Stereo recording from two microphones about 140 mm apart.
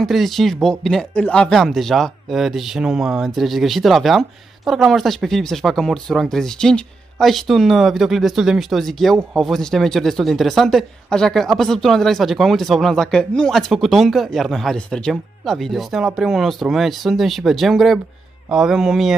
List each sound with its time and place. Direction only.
0.0 s speech: centre (ahead or behind)